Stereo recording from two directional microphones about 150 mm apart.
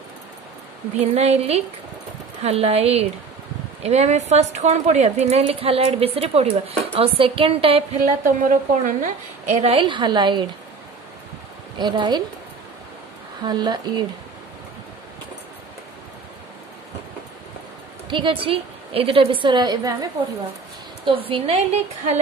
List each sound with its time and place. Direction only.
0.9 s a woman's voice: 45° right (ahead or behind)
8.2 s a woman's voice: 60° right (ahead or behind); by 10.5 s 30° right (ahead or behind)
11.8 s a woman's voice: 30° right (ahead or behind)
13.4 s speech: 30° right (ahead or behind)
18.1 s a woman's voice: 35° right (ahead or behind)
21.3 s a woman's voice: 45° right (ahead or behind)